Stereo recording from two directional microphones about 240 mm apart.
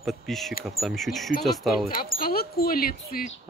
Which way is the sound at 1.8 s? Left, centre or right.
Left.